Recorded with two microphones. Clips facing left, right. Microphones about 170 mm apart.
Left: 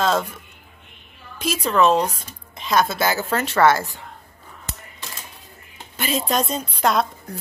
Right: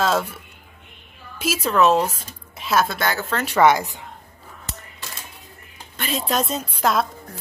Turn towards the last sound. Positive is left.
turn(degrees=0)  # may be behind; listen again after turning